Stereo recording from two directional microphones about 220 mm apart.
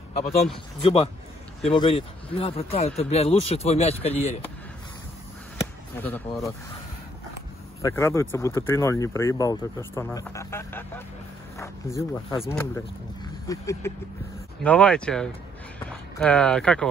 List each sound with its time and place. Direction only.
0.8 s speech: 25° left (ahead or behind)
5.9 s speech: 10° left (ahead or behind)
7.8 s speech: 10° left (ahead or behind)